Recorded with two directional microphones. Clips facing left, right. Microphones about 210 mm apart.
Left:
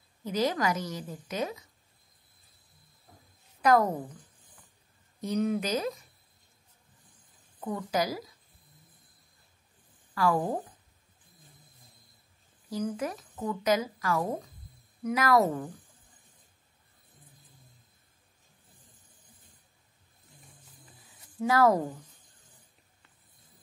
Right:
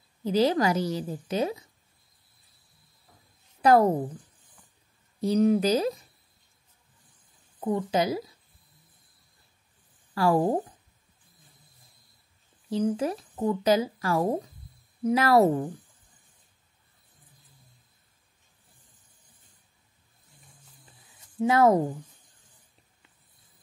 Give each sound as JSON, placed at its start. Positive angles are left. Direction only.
{"t": 0.2, "sound": "speech", "side_deg": -30}
{"t": 3.6, "sound": "speech", "side_deg": -30}
{"t": 5.2, "sound": "speech", "side_deg": -35}
{"t": 7.6, "sound": "a woman's voice", "side_deg": -25}
{"t": 10.1, "sound": "speech", "side_deg": -30}
{"t": 12.6, "sound": "speech", "side_deg": -30}
{"t": 21.4, "sound": "a woman's voice", "side_deg": -20}